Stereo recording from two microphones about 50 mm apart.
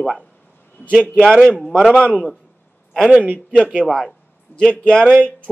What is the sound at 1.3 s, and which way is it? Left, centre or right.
A man's voice, centre.